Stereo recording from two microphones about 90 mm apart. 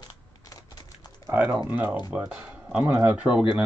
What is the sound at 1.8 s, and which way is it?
Speech, 55° left (ahead or behind).